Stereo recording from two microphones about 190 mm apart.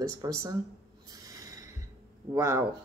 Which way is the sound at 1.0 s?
20° right (ahead or behind).